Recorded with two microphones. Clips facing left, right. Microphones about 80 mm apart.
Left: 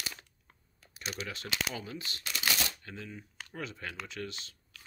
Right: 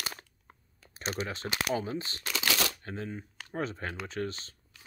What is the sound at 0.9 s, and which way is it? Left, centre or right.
Speech, right.